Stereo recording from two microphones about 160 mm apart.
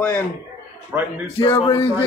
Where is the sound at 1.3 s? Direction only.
35° left (ahead or behind).